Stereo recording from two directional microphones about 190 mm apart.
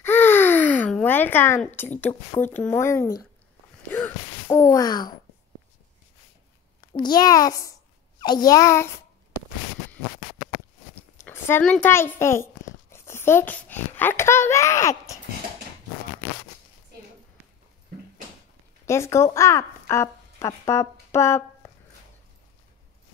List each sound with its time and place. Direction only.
0.0 s a sound: 10° left (ahead or behind)
3.9 s gasp: 10° left (ahead or behind)
6.8 s a child's voice: 20° left (ahead or behind)
11.2 s a child's voice: 10° left (ahead or behind)
18.9 s speech: 15° left (ahead or behind)